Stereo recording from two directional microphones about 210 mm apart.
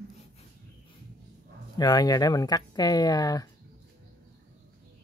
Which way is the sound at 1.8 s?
20° left (ahead or behind).